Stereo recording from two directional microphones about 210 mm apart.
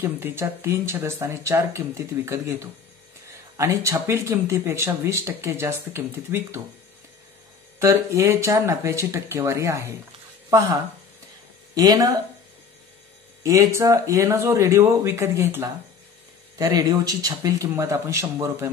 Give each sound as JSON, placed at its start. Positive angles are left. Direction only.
{"t": 0.0, "sound": "speech", "side_deg": -10}
{"t": 7.8, "sound": "speech", "side_deg": -10}
{"t": 11.7, "sound": "speech", "side_deg": -15}
{"t": 13.4, "sound": "speech", "side_deg": -15}